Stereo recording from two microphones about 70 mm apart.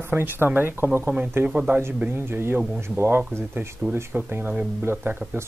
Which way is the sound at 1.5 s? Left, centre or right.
Centre.